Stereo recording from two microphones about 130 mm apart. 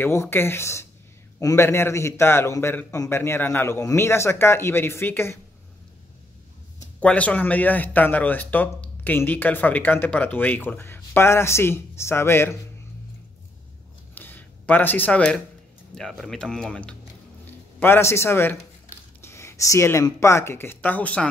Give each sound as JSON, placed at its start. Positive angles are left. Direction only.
{"t": 0.0, "sound": "a man's voice", "side_deg": 20}
{"t": 7.0, "sound": "speech", "side_deg": 10}
{"t": 14.1, "sound": "a sound", "side_deg": 15}
{"t": 15.9, "sound": "speech", "side_deg": 5}